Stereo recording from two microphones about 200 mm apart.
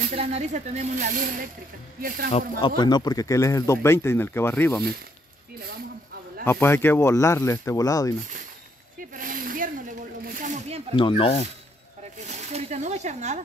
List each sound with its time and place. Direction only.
0.1 s speech: 35° right (ahead or behind)
2.8 s speech: 20° left (ahead or behind)
6.4 s speech: 10° left (ahead or behind)
9.1 s a sound: 45° right (ahead or behind)
10.2 s snake: 45° right (ahead or behind)
11.0 s speech: 25° left (ahead or behind)
12.3 s speech: 35° right (ahead or behind)